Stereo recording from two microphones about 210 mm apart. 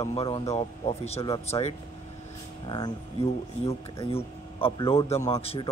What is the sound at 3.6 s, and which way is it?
Speech, 30° left (ahead or behind).